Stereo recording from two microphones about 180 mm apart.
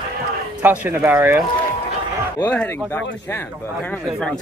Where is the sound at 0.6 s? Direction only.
10° right (ahead or behind).